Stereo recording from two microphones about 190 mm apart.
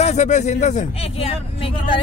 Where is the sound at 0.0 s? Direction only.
35° left (ahead or behind).